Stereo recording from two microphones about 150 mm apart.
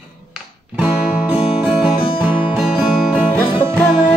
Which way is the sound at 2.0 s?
35° left (ahead or behind).